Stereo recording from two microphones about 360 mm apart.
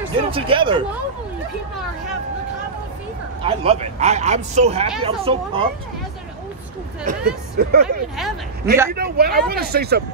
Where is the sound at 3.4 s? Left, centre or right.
Centre.